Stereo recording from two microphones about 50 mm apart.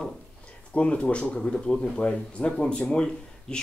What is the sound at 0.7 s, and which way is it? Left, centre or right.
Speech, left.